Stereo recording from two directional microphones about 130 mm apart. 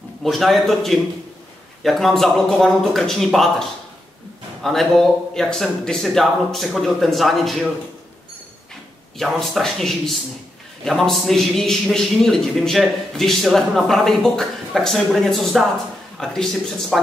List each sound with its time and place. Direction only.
0.2 s a man's voice: centre (ahead or behind)
4.6 s a man's voice: centre (ahead or behind)
9.2 s a man's voice: centre (ahead or behind)